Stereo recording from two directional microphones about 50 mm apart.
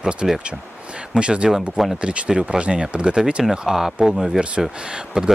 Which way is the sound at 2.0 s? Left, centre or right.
Right.